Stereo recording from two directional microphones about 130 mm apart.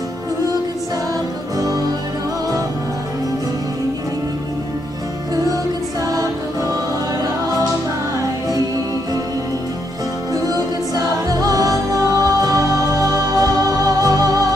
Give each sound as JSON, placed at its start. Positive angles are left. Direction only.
{"t": 10.3, "sound": "music", "side_deg": -30}